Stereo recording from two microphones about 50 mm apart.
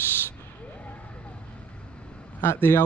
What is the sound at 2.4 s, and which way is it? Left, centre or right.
Speech, left.